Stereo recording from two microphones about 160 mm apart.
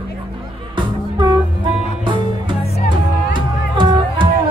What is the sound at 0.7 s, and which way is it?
Music, 30° right (ahead or behind).